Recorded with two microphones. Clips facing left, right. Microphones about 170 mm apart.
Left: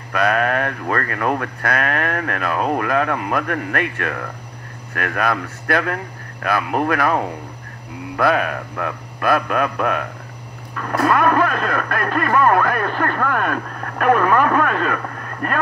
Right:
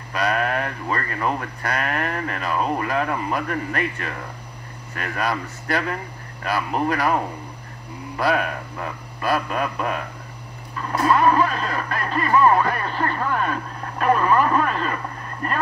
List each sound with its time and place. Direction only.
0.1 s speech: 55° left (ahead or behind)
8.2 s speech: 55° left (ahead or behind)